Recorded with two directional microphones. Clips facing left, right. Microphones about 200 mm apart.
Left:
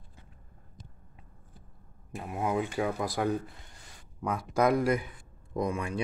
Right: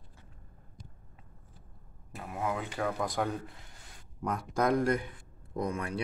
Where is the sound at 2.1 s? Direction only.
20° left (ahead or behind).